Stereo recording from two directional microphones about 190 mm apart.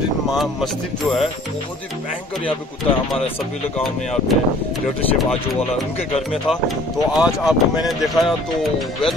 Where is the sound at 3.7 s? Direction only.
Centre (ahead or behind).